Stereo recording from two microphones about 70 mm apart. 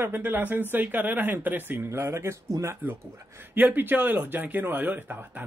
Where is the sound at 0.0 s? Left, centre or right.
Right.